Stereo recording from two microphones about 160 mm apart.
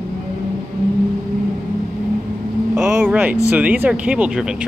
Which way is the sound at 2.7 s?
5° right (ahead or behind).